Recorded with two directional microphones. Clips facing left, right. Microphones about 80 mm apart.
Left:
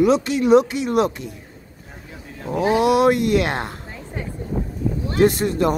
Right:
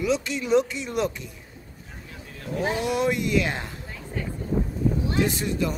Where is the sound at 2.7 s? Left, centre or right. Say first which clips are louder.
Left 10 dB; left.